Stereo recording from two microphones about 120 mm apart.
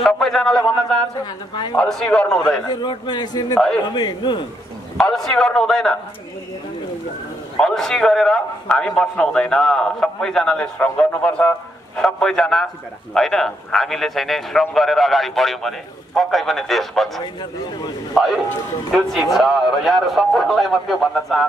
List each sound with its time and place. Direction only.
0.0 s a man's voice: 5° left (ahead or behind)
1.2 s speech: 35° left (ahead or behind)
1.8 s a man's voice: 5° left (ahead or behind)
2.6 s speech: 40° left (ahead or behind)
4.9 s a man's voice: 5° left (ahead or behind)
7.5 s a man's voice: 5° left (ahead or behind)
17.2 s speech: 35° left (ahead or behind)
18.1 s a man's voice: centre (ahead or behind)